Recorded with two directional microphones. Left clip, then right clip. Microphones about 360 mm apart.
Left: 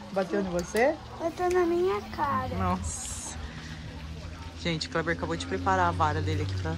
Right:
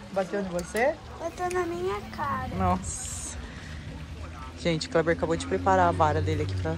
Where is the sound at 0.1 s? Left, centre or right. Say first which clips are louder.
Even; centre.